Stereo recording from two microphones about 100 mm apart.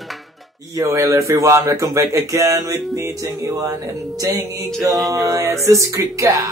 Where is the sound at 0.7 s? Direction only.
30° right (ahead or behind).